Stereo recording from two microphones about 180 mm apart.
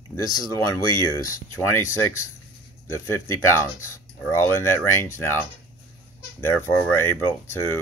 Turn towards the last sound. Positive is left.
turn(degrees=15)  # may be behind; listen again after turning